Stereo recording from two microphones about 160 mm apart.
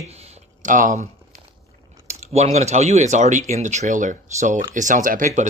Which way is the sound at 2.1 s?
45° right (ahead or behind).